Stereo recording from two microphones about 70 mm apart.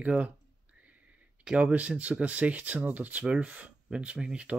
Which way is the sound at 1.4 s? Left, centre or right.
Centre.